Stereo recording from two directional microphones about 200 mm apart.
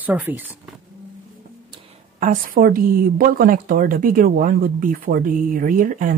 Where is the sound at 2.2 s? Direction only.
45° right (ahead or behind).